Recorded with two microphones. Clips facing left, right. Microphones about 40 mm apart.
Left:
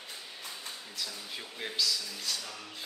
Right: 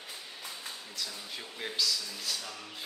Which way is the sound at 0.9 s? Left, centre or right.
Centre.